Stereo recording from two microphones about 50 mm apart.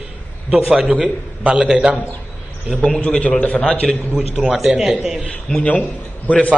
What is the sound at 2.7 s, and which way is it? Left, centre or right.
Speech, centre.